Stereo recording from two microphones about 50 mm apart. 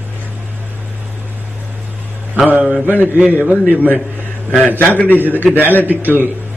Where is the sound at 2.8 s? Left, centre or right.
Left.